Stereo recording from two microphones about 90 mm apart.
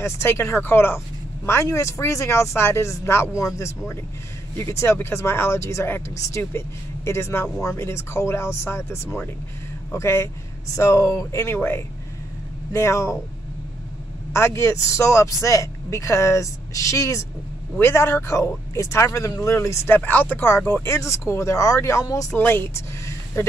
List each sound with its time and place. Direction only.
0.0 s speech: 30° left (ahead or behind)
14.3 s speech: 30° left (ahead or behind)
22.4 s speech: 25° left (ahead or behind)